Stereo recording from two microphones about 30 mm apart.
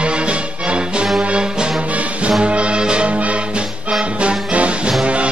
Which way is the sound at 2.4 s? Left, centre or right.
Right.